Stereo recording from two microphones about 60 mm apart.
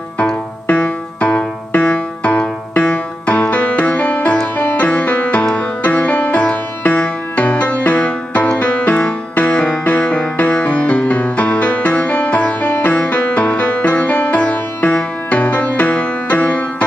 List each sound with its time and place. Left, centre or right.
0.7 s music: left